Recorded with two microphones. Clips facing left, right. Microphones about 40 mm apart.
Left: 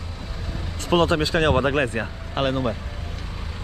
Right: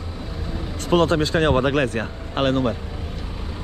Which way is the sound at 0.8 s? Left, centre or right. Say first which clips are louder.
Right 1 dB; left.